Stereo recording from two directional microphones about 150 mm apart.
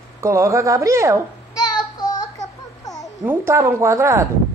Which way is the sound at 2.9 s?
25° left (ahead or behind).